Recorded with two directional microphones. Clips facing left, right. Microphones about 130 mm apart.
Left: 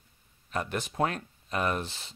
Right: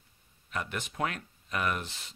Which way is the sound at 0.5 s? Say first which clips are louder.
Left 4 dB; 35° left (ahead or behind).